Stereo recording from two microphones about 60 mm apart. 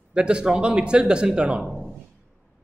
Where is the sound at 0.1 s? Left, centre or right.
Centre.